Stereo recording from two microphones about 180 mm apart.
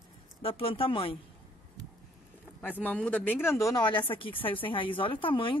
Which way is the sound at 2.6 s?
10° left (ahead or behind).